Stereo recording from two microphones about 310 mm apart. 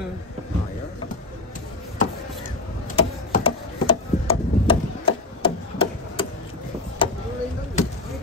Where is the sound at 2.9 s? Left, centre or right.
Centre.